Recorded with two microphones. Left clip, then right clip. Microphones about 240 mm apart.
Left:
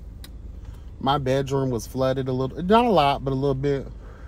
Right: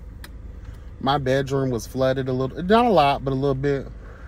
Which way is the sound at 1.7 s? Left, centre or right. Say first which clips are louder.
Right 2 dB; centre.